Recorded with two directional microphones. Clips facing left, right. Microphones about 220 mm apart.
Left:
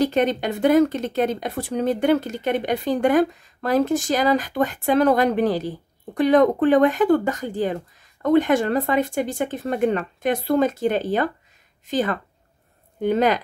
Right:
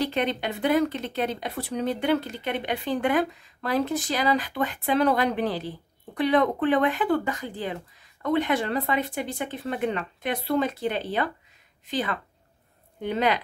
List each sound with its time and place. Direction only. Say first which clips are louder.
0.0 s speech: left 6 dB; 45° left (ahead or behind)